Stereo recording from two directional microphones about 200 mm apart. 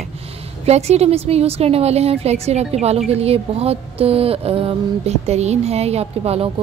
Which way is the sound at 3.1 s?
30° right (ahead or behind).